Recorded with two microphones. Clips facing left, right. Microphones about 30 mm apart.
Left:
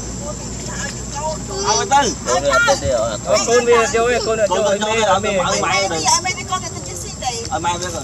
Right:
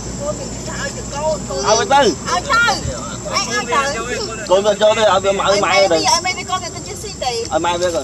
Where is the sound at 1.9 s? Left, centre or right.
Right.